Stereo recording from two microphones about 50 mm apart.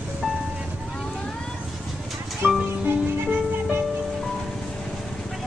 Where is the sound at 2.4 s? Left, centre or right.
Right.